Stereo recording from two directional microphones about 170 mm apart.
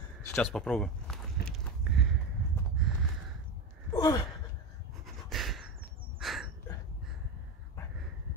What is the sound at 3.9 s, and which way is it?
Gasp, 20° left (ahead or behind).